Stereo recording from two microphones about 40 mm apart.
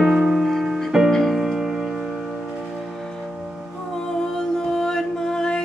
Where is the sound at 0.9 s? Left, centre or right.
Centre.